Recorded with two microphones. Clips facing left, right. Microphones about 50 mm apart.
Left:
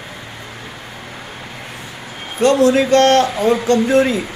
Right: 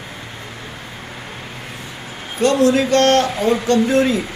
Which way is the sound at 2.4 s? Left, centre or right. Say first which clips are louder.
Left 2 dB; left.